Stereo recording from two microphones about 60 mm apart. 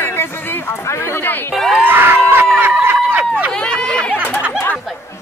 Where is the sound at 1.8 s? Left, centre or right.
Right.